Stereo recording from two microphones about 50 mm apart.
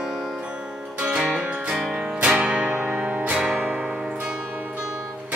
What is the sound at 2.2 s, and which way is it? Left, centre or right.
Music, centre.